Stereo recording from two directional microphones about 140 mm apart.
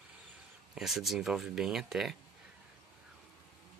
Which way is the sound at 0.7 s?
Centre (ahead or behind).